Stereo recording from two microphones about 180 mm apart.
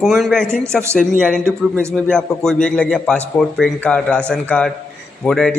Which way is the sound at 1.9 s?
5° left (ahead or behind).